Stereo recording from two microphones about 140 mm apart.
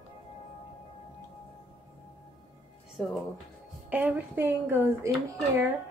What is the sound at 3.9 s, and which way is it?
Speech, 15° right (ahead or behind).